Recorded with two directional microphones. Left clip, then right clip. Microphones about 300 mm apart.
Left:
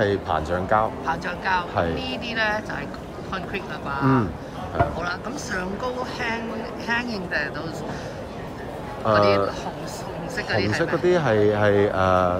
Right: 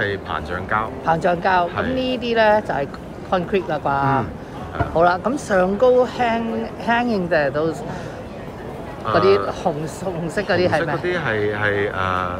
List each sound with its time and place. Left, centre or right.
0.0 s speech: left
1.0 s speech: centre
9.1 s speech: centre
11.1 s speech: centre